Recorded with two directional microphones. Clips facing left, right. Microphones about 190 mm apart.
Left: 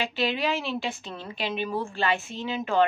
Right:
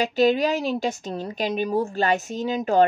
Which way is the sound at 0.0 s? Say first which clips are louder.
Right 8 dB; 40° right (ahead or behind).